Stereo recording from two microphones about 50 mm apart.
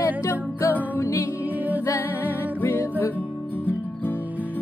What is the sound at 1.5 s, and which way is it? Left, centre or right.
Music, right.